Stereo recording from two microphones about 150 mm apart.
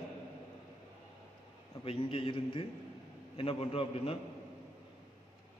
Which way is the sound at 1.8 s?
35° left (ahead or behind).